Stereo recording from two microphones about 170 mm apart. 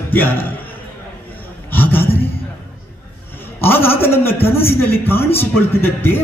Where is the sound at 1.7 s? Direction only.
10° left (ahead or behind).